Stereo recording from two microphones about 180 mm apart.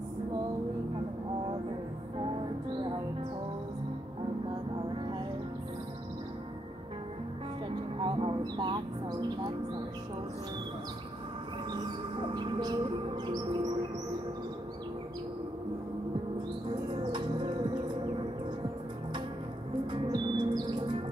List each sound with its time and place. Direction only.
8.0 s a sound: 30° right (ahead or behind)
12.3 s music: 25° right (ahead or behind)
19.9 s music: 25° right (ahead or behind)